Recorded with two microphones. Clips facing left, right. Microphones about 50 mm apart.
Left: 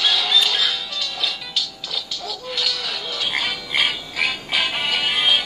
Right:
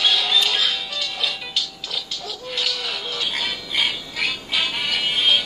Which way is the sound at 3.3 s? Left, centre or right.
Left.